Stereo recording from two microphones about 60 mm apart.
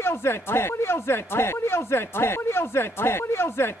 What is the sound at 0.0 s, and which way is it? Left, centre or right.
Speech, left.